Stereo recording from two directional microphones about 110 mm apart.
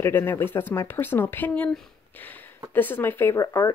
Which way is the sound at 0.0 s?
20° left (ahead or behind).